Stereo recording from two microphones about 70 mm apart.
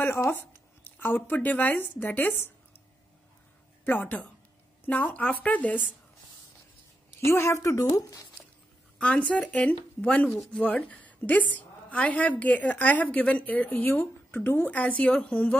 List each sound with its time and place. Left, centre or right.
0.2 s speech: left
3.8 s a woman's voice: left
7.2 s a woman's voice: left
8.9 s a woman's voice: centre